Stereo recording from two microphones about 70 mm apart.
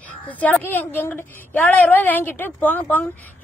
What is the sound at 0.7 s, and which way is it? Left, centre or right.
A woman's voice, left.